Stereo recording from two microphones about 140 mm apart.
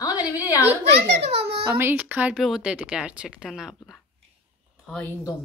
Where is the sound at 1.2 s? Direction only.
45° right (ahead or behind).